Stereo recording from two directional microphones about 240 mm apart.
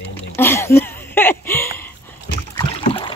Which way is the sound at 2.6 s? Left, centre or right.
Left.